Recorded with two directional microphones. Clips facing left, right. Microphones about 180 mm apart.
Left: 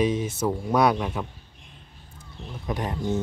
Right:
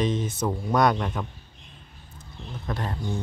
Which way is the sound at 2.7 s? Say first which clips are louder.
Left 4 dB; 20° left (ahead or behind).